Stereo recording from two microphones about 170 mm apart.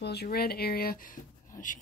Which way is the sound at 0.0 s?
70° left (ahead or behind).